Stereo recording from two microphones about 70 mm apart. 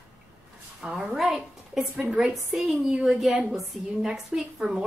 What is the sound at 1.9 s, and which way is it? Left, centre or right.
A woman's voice, centre.